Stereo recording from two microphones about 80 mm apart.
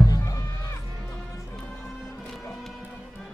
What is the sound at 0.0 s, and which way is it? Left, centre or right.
Music, left.